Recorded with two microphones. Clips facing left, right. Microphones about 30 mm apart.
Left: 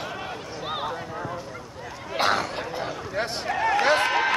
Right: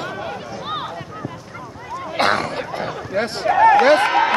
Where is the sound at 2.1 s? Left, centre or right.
Right.